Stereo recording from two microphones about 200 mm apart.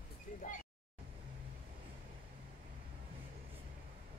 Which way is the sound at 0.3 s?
40° left (ahead or behind).